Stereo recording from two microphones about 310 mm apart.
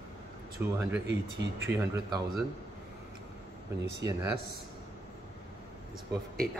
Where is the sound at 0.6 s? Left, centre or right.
Centre.